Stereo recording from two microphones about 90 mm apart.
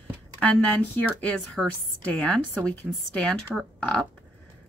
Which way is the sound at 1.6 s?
5° right (ahead or behind).